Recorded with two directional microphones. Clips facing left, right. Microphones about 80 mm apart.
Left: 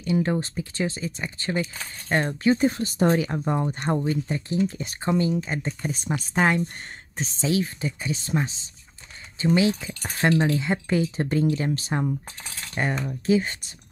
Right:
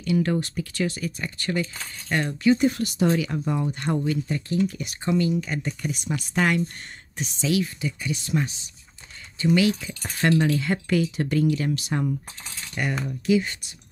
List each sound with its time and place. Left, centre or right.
0.0 s speech: left